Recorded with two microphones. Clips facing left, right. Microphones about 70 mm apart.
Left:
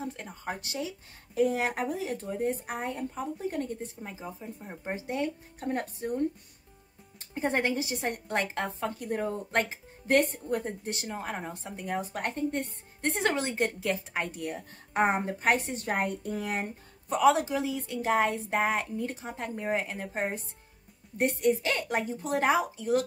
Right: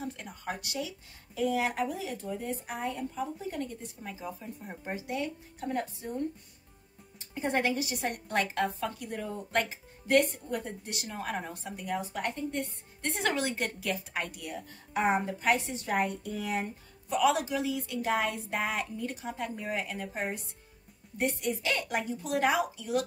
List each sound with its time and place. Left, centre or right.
0.1 s a woman's voice: left
4.0 s a woman's voice: left
7.3 s a woman's voice: left
11.9 s a woman's voice: left
17.2 s a woman's voice: left